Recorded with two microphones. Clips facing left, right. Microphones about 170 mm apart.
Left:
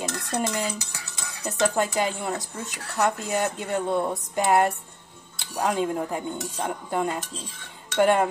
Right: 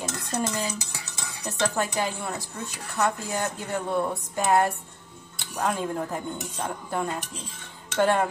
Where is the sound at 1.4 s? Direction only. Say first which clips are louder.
Left 3 dB; 20° left (ahead or behind).